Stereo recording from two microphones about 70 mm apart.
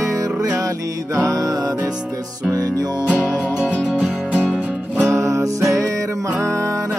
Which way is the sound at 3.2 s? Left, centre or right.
Centre.